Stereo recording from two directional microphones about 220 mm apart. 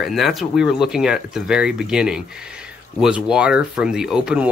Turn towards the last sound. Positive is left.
turn(degrees=-5)  # may be behind; listen again after turning